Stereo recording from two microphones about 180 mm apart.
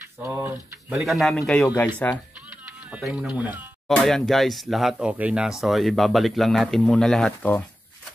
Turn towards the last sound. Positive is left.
turn(degrees=5)  # may be behind; listen again after turning